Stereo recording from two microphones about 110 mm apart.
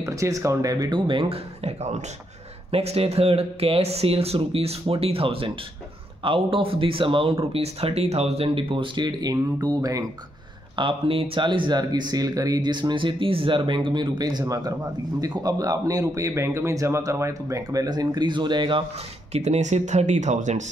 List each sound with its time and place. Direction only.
0.0 s a man's voice: 30° right (ahead or behind); by 2.0 s 90° right
2.7 s speech: 65° right (ahead or behind); by 10.0 s 30° right (ahead or behind)
10.8 s a man's voice: 55° right (ahead or behind)
19.3 s speech: 85° right